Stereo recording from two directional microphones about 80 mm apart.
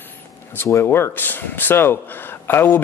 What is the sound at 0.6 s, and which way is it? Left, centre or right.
Speech, left.